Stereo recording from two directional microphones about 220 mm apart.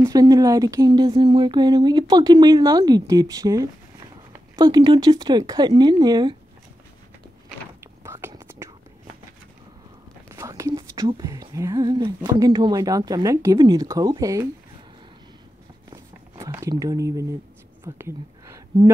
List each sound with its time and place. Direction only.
0.0 s speech: 15° right (ahead or behind)
8.0 s whispering: 10° right (ahead or behind)
10.3 s speech: 15° right (ahead or behind)
15.9 s a sound: 15° right (ahead or behind)
17.8 s speech: 10° right (ahead or behind)